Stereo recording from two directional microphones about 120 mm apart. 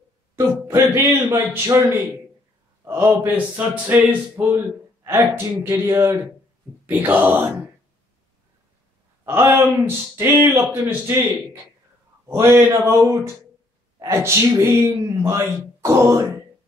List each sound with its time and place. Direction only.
0.7 s a man's voice: 20° right (ahead or behind)
9.2 s a man's voice: 20° right (ahead or behind)
12.3 s a man's voice: 20° right (ahead or behind)